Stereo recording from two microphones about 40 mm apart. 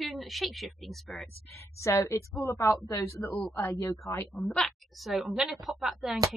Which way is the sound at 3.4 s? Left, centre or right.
Left.